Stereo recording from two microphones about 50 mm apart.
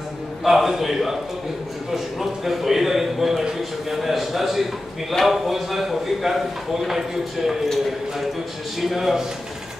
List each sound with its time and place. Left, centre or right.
0.4 s speech: centre
2.1 s speech: centre
8.8 s speech: centre